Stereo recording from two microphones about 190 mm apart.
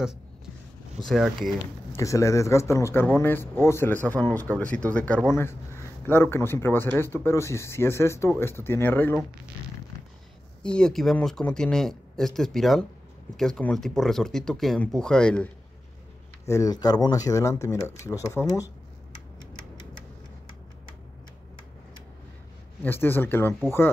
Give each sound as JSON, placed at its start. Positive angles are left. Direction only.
{"t": 0.9, "sound": "speech", "side_deg": 0}
{"t": 1.9, "sound": "speech", "side_deg": 15}
{"t": 10.6, "sound": "speech", "side_deg": 5}
{"t": 16.4, "sound": "speech", "side_deg": 20}
{"t": 22.8, "sound": "speech", "side_deg": 10}